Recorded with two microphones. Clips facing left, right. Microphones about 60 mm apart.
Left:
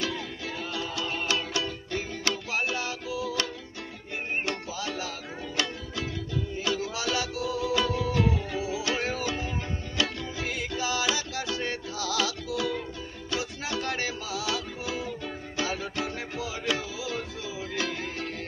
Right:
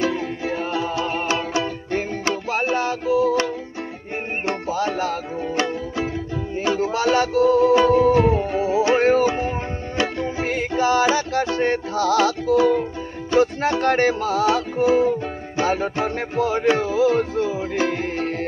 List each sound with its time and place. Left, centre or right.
0.0 s music: right
6.5 s music: right